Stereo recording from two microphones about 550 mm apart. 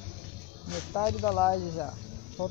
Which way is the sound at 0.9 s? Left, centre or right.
Right.